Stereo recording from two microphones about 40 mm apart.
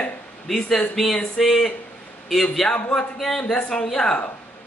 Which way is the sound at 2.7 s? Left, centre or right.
Left.